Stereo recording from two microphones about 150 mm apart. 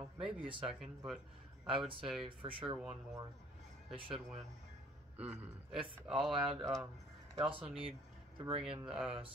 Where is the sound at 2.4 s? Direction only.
35° right (ahead or behind).